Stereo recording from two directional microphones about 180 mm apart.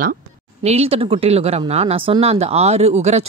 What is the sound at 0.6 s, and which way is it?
Speech, 35° right (ahead or behind).